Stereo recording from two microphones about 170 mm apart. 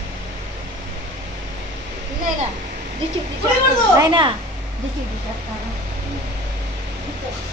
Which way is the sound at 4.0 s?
30° right (ahead or behind).